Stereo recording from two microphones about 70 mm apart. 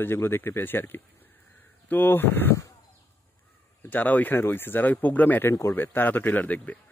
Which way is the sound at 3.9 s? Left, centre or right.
Left.